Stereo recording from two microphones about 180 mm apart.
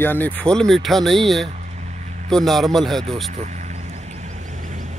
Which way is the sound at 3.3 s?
40° right (ahead or behind).